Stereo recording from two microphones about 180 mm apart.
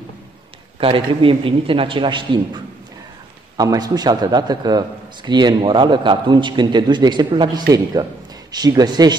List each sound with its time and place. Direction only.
0.7 s speech: 30° right (ahead or behind)